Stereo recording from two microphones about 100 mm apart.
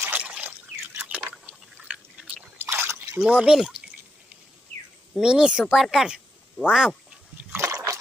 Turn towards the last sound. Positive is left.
turn(degrees=-30)  # may be behind; listen again after turning